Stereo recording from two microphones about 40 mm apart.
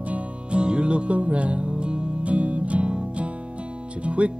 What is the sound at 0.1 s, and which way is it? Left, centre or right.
Music, right.